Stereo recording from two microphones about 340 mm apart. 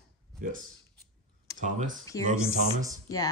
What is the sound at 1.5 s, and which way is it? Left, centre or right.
Speech, right.